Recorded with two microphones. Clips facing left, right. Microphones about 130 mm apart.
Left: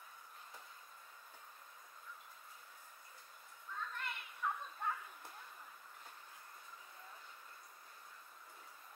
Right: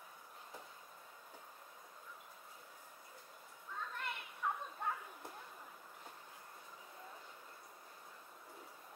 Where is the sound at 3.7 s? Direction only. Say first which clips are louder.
Right 1 dB; 20° right (ahead or behind).